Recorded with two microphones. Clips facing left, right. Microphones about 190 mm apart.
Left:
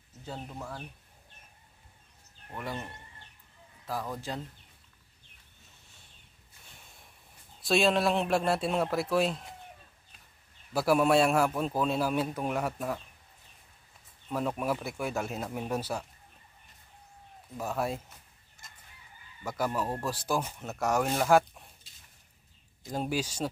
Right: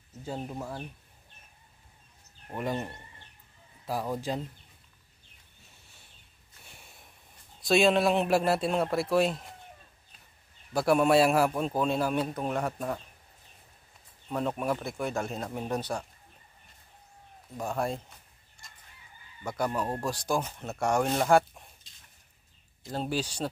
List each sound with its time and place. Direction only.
0.2 s speech: 20° right (ahead or behind)
2.5 s a man's voice: 20° right (ahead or behind)
7.6 s a man's voice: centre (ahead or behind)
10.7 s a man's voice: 5° left (ahead or behind)
14.6 s a man's voice: 5° left (ahead or behind)
17.6 s a man's voice: 5° left (ahead or behind)
18.6 s chicken: centre (ahead or behind)
19.4 s a man's voice: 5° left (ahead or behind)
22.9 s speech: 10° left (ahead or behind)